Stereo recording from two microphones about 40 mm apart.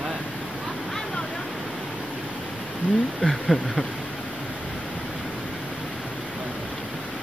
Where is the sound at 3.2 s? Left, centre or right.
Centre.